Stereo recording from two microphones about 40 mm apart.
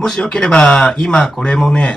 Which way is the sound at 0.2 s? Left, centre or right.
Left.